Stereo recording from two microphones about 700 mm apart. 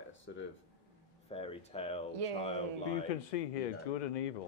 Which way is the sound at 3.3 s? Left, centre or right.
Left.